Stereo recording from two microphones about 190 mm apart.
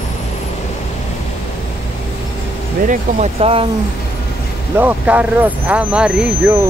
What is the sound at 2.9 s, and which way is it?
Speech, 35° right (ahead or behind).